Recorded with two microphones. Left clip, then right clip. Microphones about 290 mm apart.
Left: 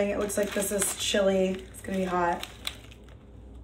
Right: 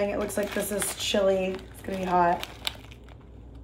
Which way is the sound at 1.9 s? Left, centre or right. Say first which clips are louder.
Right 4 dB; centre.